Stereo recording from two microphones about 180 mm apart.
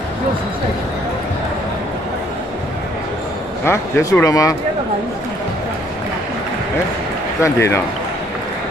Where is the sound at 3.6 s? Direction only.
15° left (ahead or behind).